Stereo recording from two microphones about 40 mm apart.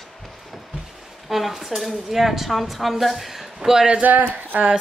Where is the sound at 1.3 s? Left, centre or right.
Centre.